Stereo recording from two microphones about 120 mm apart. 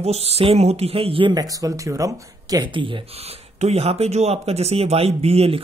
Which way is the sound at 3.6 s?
60° right (ahead or behind).